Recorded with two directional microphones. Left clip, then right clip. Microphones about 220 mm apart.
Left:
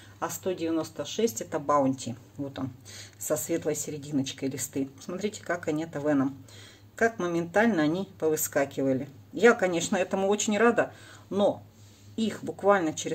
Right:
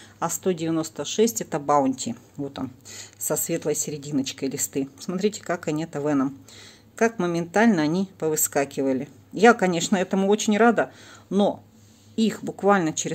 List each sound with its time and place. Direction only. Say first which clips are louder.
0.2 s speech: right 5 dB; 45° right (ahead or behind)